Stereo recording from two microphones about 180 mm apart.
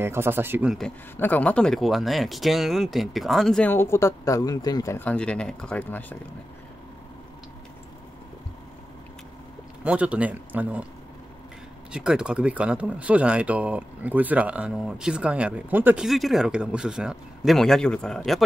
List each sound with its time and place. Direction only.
0.0 s speech: 15° right (ahead or behind)
0.7 s speech: 10° left (ahead or behind)
9.8 s speech: 5° right (ahead or behind)
11.9 s speech: 5° right (ahead or behind)